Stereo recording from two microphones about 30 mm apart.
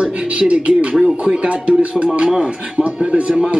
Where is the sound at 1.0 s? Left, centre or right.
Centre.